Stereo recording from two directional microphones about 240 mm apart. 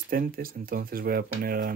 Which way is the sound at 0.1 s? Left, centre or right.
Right.